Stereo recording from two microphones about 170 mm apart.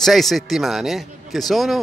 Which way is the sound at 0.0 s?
Centre (ahead or behind).